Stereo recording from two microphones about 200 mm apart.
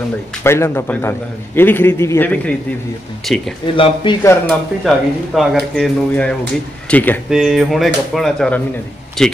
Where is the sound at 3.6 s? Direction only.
25° left (ahead or behind).